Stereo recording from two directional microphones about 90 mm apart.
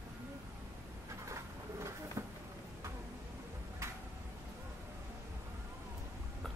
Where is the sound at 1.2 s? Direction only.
35° right (ahead or behind).